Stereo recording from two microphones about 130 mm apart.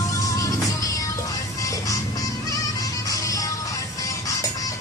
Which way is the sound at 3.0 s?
25° left (ahead or behind).